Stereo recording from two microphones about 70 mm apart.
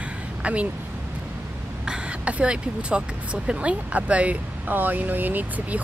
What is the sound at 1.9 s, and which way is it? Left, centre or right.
Speech, centre.